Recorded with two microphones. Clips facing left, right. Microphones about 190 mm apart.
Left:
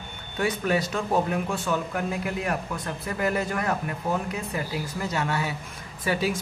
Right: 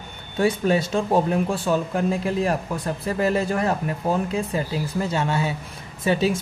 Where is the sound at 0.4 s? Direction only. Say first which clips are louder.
Right 5 dB; 30° right (ahead or behind).